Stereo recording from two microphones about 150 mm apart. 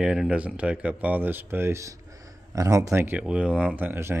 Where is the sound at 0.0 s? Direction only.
5° right (ahead or behind).